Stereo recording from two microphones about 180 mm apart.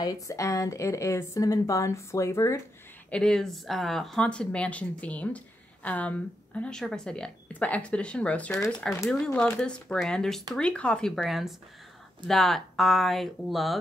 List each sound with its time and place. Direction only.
0.0 s speech: 20° left (ahead or behind)
3.1 s speech: 5° left (ahead or behind)